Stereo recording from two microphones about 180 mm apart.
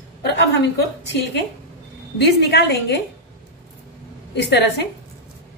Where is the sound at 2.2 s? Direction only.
70° left (ahead or behind).